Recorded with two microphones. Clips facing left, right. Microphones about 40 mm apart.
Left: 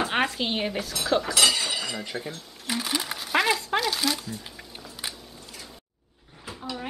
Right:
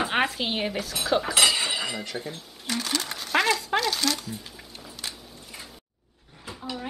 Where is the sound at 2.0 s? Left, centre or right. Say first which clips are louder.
Even; centre.